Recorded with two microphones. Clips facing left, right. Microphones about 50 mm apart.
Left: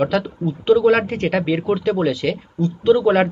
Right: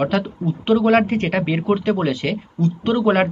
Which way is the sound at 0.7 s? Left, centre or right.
Right.